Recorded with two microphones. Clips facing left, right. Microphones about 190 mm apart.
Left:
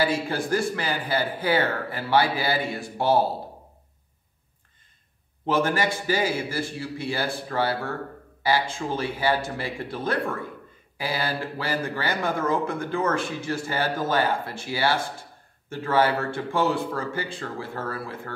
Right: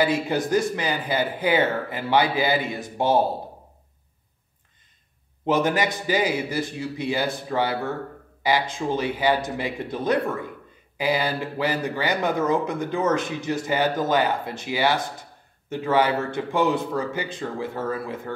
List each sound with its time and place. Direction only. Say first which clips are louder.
0.0 s speech: right 3 dB; 20° right (ahead or behind)
5.4 s speech: right 2 dB; 15° right (ahead or behind)